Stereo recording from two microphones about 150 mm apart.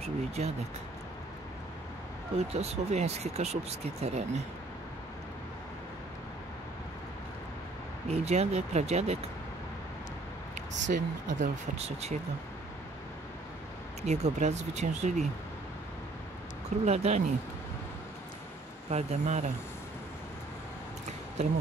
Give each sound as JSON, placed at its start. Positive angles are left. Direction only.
{"t": 0.0, "sound": "speech", "side_deg": -45}
{"t": 2.3, "sound": "speech", "side_deg": -45}
{"t": 8.1, "sound": "speech", "side_deg": -45}
{"t": 10.5, "sound": "speech", "side_deg": -55}
{"t": 14.0, "sound": "speech", "side_deg": -50}
{"t": 16.8, "sound": "speech", "side_deg": -45}
{"t": 18.9, "sound": "speech", "side_deg": -50}